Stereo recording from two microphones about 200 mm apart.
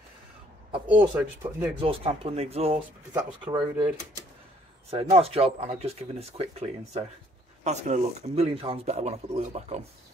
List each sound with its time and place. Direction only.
1.1 s speech: 10° right (ahead or behind)
1.8 s speech: 30° right (ahead or behind)
4.9 s speech: 30° right (ahead or behind)